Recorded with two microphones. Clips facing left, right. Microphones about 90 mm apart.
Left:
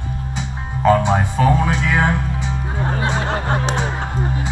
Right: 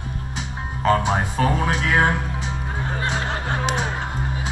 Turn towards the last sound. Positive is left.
turn(degrees=40)  # may be behind; listen again after turning